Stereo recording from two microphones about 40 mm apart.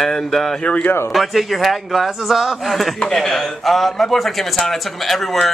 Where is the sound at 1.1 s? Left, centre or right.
Centre.